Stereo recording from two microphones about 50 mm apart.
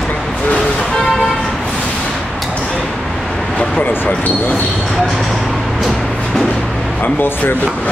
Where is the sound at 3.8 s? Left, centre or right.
Left.